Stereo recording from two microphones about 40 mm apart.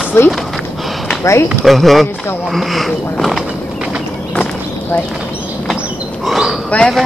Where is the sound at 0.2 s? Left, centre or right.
Left.